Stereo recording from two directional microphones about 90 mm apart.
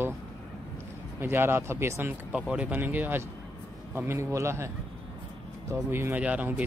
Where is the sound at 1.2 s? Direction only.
25° right (ahead or behind).